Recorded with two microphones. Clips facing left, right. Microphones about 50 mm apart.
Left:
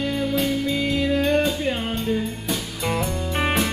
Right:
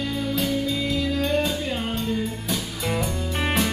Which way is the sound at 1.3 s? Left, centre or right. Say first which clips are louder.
Left 3 dB; centre.